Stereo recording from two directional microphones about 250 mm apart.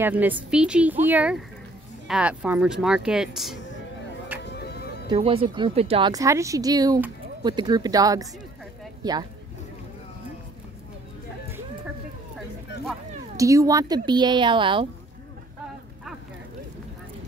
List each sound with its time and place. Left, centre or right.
0.0 s speech: centre
4.4 s music: left
5.1 s speech: right
13.4 s speech: centre